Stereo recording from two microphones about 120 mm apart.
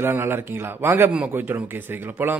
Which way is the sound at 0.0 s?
20° right (ahead or behind).